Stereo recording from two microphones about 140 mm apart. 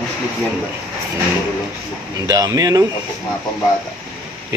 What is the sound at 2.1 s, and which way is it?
Speech, 25° right (ahead or behind).